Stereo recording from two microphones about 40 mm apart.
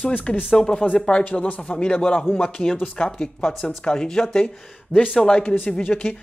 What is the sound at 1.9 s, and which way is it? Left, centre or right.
Speech, centre.